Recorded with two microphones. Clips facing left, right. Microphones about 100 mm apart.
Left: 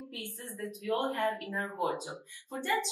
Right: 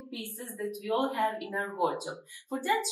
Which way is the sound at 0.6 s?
15° right (ahead or behind).